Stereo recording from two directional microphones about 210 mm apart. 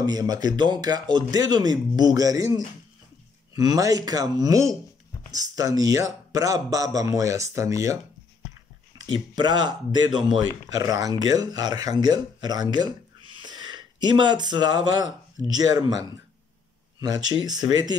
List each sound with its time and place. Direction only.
0.0 s speech: 20° right (ahead or behind)
9.0 s speech: 20° right (ahead or behind)
17.0 s speech: 20° right (ahead or behind)